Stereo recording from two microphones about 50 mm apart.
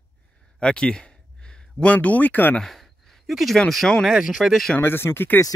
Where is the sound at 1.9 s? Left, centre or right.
Left.